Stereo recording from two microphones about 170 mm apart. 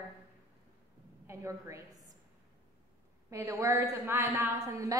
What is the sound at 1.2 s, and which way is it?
Speech, 15° right (ahead or behind).